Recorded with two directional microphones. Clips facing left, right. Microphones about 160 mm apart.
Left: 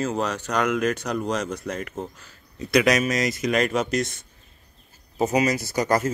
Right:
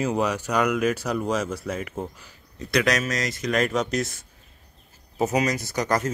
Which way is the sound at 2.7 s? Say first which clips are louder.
Left 3 dB; 10° left (ahead or behind).